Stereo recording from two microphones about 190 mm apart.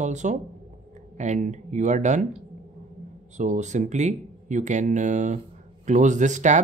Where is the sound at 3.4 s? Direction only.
40° right (ahead or behind).